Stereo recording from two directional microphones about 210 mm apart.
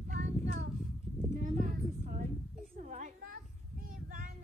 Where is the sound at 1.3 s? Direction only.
35° right (ahead or behind).